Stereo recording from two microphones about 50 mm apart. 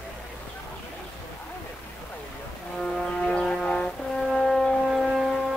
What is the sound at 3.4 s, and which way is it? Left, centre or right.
Music, centre.